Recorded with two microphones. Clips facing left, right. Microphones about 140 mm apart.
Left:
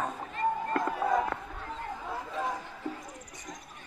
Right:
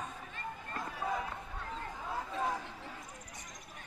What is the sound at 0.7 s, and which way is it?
Run, 75° left (ahead or behind).